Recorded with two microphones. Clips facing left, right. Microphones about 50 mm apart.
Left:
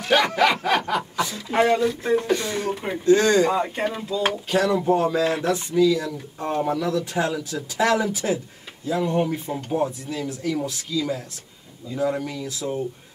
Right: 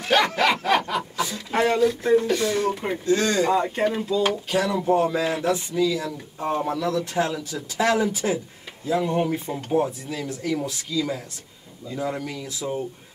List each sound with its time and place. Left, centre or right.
0.1 s speech: centre
3.4 s speech: centre